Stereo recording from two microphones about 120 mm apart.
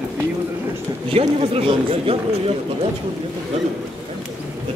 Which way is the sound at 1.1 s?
55° right (ahead or behind).